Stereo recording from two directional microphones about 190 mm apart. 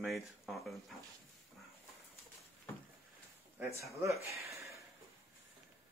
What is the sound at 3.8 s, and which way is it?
Speech, 15° right (ahead or behind).